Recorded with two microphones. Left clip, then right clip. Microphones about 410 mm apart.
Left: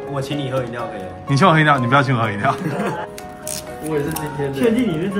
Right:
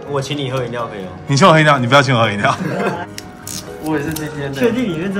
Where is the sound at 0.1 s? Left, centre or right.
Centre.